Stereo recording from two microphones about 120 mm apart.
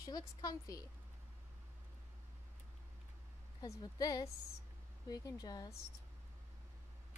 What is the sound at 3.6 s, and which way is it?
A woman's voice, 30° left (ahead or behind).